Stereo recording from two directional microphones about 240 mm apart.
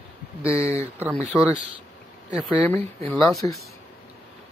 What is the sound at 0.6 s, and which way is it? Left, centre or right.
Speech, right.